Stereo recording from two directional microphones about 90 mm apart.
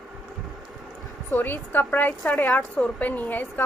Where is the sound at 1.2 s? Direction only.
25° left (ahead or behind).